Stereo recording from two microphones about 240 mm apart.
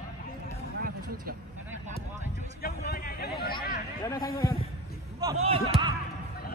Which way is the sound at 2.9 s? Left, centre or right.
Left.